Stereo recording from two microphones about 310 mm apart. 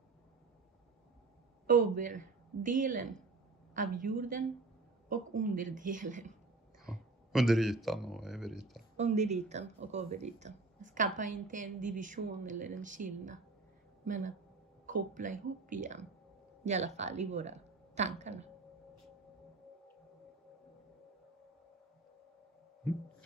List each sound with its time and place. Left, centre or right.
1.7 s speech: right
6.9 s speech: centre
8.9 s a woman's voice: right